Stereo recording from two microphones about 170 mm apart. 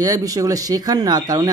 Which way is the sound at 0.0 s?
20° right (ahead or behind).